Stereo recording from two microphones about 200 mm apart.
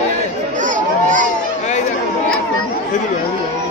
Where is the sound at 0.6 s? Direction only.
40° right (ahead or behind).